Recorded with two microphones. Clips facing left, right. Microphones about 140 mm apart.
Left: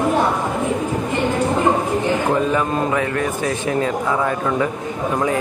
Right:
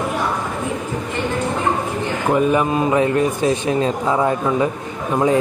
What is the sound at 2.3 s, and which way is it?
Speech, 15° right (ahead or behind).